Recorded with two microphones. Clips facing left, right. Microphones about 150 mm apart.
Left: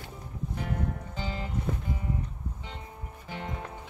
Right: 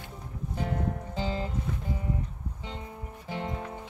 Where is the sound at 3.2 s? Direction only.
25° right (ahead or behind).